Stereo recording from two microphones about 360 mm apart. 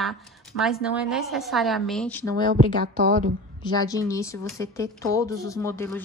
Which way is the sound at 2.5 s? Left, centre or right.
Right.